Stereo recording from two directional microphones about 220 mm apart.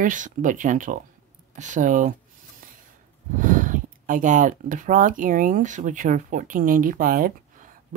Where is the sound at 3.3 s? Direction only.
35° right (ahead or behind).